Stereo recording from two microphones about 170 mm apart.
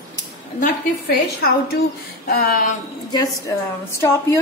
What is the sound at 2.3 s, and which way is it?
Speech, 60° left (ahead or behind).